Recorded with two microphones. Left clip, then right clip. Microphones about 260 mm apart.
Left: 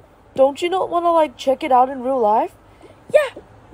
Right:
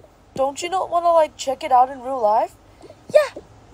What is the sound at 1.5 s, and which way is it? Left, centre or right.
Speech, left.